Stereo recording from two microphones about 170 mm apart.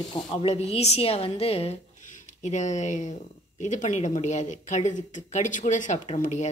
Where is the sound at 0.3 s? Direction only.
35° left (ahead or behind).